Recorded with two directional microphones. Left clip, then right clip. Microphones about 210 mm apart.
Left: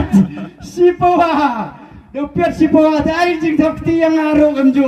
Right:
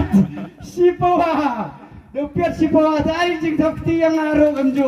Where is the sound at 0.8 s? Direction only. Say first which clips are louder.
Left 4 dB; 55° left (ahead or behind).